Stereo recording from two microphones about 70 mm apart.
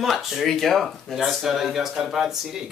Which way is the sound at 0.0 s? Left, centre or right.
Centre.